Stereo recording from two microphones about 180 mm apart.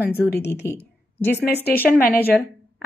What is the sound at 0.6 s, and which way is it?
Speech, 10° left (ahead or behind).